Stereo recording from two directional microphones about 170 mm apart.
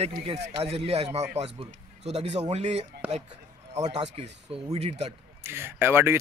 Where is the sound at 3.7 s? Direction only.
40° right (ahead or behind).